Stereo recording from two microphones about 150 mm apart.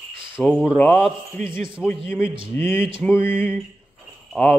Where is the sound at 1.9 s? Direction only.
15° left (ahead or behind).